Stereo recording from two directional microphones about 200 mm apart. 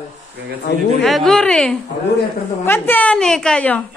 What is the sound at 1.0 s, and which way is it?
A man's voice, centre (ahead or behind).